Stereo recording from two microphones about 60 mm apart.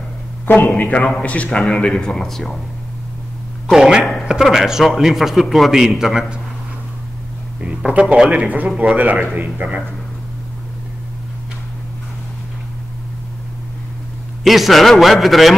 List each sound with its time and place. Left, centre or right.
0.7 s a man's voice: left; by 2.6 s centre
3.7 s a man's voice: centre
4.0 s speech: centre
4.3 s a man's voice: centre
7.6 s a man's voice: centre
14.4 s a man's voice: centre